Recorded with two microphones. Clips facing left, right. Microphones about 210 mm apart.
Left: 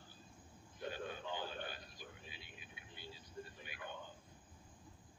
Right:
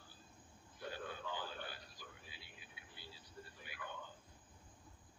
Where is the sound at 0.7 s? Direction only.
20° left (ahead or behind).